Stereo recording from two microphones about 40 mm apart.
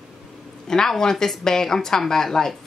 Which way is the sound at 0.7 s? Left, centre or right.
Centre.